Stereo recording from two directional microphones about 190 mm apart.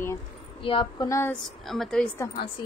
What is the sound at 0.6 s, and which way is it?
Speech, 25° left (ahead or behind).